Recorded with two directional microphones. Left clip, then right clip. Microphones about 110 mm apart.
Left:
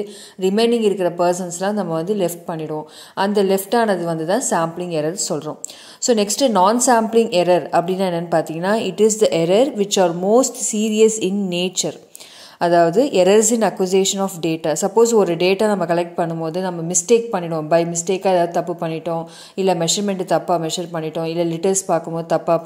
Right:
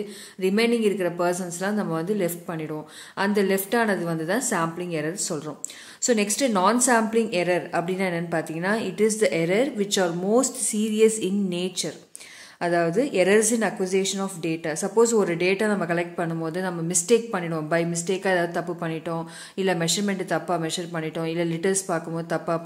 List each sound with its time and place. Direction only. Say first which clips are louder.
0.4 s a woman's voice: left 6 dB; 30° left (ahead or behind)